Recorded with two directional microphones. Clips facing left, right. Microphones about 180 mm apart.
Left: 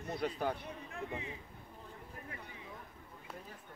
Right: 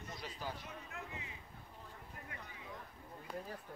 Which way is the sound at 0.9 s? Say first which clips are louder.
Left 10 dB; 30° left (ahead or behind).